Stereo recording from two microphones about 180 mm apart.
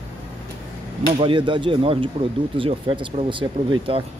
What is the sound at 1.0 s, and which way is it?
Speech, 30° right (ahead or behind).